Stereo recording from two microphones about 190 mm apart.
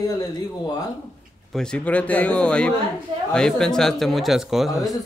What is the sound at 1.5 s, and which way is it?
A man's voice, 5° left (ahead or behind).